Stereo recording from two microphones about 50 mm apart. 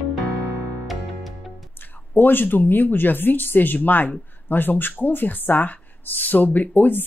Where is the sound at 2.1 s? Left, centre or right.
Left.